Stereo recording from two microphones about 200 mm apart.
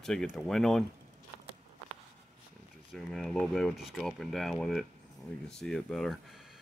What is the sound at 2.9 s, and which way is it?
Speech, centre (ahead or behind).